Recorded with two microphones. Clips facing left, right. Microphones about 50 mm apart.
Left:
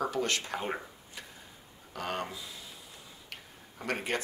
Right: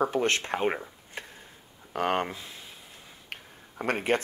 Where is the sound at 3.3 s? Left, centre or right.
Right.